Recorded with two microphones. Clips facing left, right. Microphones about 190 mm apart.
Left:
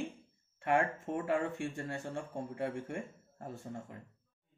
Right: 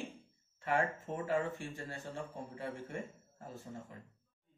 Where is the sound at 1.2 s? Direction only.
55° left (ahead or behind).